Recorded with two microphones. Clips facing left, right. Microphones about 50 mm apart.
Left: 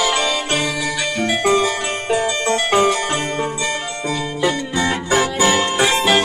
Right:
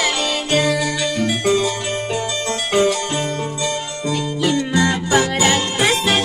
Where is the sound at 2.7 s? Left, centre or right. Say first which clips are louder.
Even; left.